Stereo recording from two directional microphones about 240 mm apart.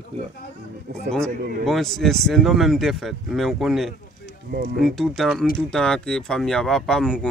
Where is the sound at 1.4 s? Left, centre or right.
Right.